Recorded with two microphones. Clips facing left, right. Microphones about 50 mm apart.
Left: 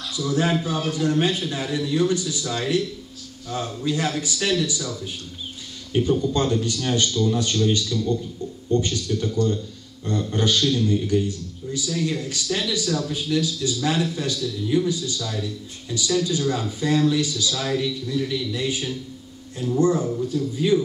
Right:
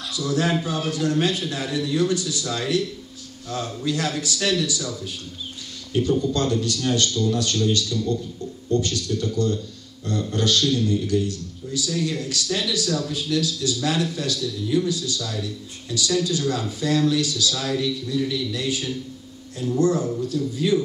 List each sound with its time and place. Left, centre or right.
0.1 s a man's voice: centre